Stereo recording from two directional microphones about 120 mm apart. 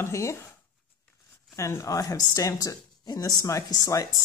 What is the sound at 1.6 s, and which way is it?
Speech, 25° left (ahead or behind).